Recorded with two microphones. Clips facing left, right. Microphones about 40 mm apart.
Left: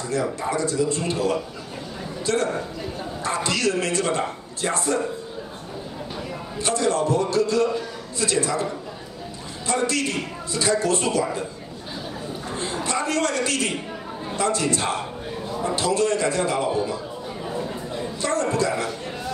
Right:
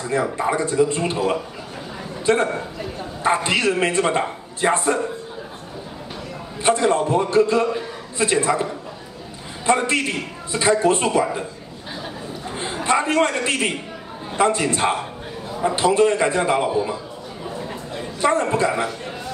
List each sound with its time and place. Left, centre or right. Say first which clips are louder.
0.1 s a man's voice: right 4 dB; right
6.6 s a man's voice: right 4 dB; right
9.7 s a man's voice: right 4 dB; right
12.5 s a man's voice: right 6 dB; right
18.2 s a man's voice: right 5 dB; right
18.9 s a sound: even; centre